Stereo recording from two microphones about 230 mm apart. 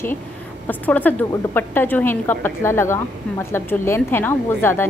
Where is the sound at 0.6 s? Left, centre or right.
Centre.